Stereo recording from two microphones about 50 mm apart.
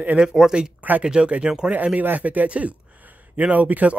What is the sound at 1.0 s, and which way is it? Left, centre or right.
Speech, centre.